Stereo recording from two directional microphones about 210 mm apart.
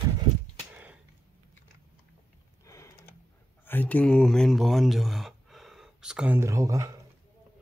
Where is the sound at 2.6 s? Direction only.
15° left (ahead or behind).